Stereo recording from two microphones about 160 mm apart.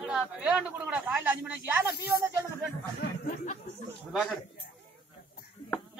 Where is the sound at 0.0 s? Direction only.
5° right (ahead or behind).